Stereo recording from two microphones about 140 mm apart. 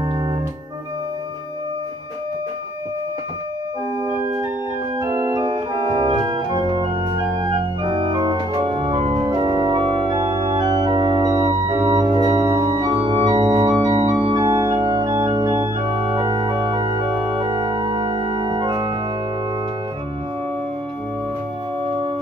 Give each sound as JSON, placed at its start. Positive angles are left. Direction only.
{"t": 4.9, "sound": "organ", "side_deg": -25}
{"t": 12.0, "sound": "organ", "side_deg": -30}
{"t": 12.4, "sound": "organ", "side_deg": -20}
{"t": 12.9, "sound": "organ", "side_deg": -35}
{"t": 13.4, "sound": "music", "side_deg": -45}
{"t": 13.7, "sound": "organ", "side_deg": -30}
{"t": 21.8, "sound": "singing bowl", "side_deg": -40}